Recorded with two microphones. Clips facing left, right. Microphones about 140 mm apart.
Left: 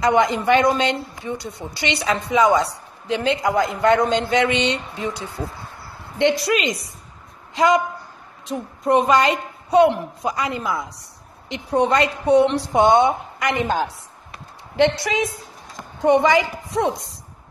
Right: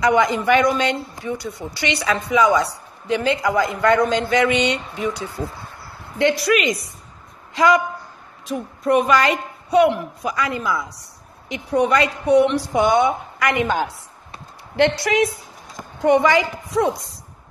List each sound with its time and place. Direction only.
0.0 s speech: 25° left (ahead or behind)
8.8 s speech: 25° left (ahead or behind)
14.8 s a woman's voice: 75° right (ahead or behind)
16.2 s speech: 25° left (ahead or behind)